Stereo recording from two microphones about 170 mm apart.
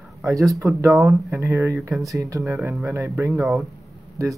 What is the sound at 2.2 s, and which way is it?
Speech, 20° right (ahead or behind).